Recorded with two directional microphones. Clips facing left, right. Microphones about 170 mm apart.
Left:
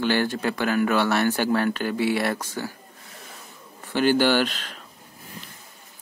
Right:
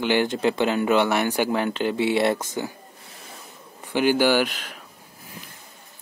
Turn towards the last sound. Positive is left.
turn(degrees=-10)  # may be behind; listen again after turning